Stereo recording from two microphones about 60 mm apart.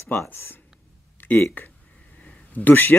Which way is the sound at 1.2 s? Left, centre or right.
Left.